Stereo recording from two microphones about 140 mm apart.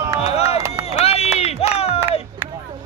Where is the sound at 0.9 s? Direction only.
50° left (ahead or behind).